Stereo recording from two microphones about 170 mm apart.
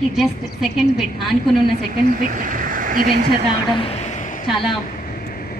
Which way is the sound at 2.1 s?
55° right (ahead or behind).